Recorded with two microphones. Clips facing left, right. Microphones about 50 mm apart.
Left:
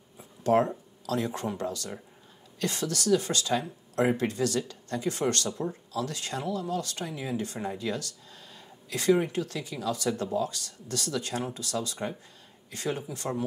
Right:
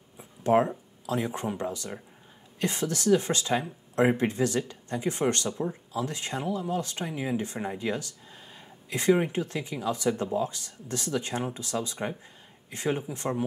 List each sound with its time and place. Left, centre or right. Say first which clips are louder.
0.2 s speech: right 1 dB; right